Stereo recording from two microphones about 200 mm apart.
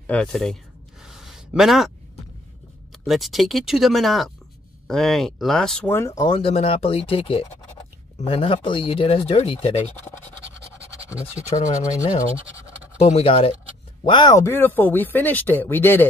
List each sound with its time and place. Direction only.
0.0 s speech: 5° left (ahead or behind)
1.0 s a sound: centre (ahead or behind)
2.9 s speech: centre (ahead or behind); by 9.9 s 30° left (ahead or behind)
11.5 s speech: 15° left (ahead or behind)
13.0 s speech: 30° left (ahead or behind); by 16.1 s 10° left (ahead or behind)